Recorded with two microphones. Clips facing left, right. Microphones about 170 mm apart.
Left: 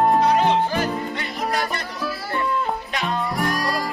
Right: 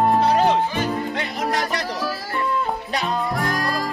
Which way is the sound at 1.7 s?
90° right.